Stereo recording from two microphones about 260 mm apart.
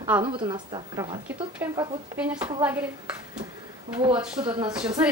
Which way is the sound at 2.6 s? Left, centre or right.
Centre.